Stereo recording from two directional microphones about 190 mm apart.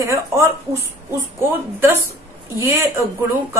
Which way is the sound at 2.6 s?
15° right (ahead or behind).